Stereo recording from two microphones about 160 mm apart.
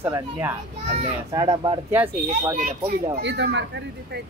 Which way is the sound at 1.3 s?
25° right (ahead or behind).